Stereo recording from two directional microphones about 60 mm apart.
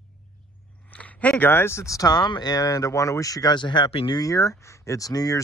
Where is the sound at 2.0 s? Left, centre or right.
Left.